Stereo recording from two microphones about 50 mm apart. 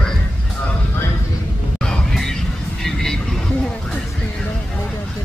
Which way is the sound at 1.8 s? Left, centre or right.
Centre.